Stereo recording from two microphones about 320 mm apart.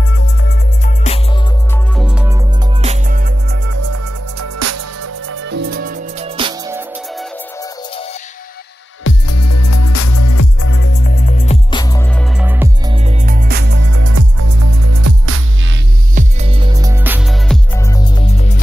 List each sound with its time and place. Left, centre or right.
0.4 s music: left
2.0 s music: centre
2.8 s music: right
3.7 s music: right; by 7.2 s centre
9.0 s music: left
10.6 s music: left; by 13.9 s right
13.9 s music: right
16.2 s music: centre